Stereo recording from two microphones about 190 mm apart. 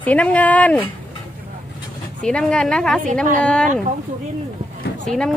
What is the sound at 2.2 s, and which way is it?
Speech, 5° left (ahead or behind).